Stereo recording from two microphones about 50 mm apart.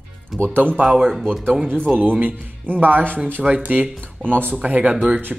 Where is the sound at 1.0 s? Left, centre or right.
Centre.